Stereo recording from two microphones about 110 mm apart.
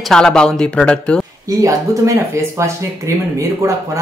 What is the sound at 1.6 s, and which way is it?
Speech, 25° right (ahead or behind).